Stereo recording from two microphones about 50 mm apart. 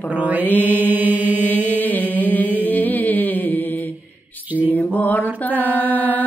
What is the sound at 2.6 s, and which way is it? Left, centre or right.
Mantra, left.